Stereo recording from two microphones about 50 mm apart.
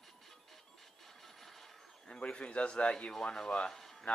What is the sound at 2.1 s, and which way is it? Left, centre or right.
Speech, left.